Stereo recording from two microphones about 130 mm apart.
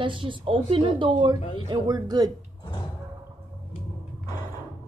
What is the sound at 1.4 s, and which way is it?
Speech, 60° left (ahead or behind).